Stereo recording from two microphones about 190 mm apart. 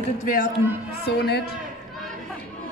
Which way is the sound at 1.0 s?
60° left (ahead or behind).